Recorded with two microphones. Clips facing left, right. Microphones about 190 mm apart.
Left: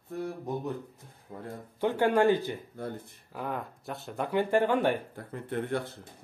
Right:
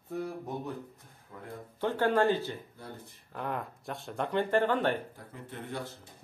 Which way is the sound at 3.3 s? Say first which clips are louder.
Left 1 dB; centre (ahead or behind).